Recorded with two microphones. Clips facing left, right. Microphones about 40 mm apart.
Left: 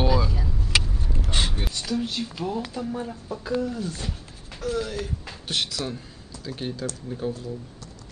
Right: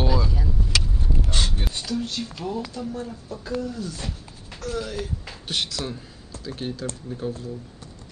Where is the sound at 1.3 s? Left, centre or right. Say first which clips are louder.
Left 3 dB; centre.